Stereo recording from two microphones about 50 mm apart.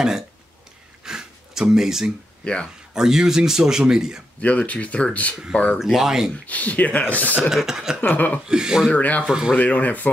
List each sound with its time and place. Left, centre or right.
1.0 s a sound: centre
2.4 s speech: centre
2.9 s a man's voice: centre
4.4 s speech: left
5.8 s a man's voice: centre
6.4 s speech: left
7.4 s a man's voice: centre
8.0 s speech: left
8.5 s a man's voice: centre
8.9 s speech: left
9.2 s a man's voice: centre
9.6 s speech: left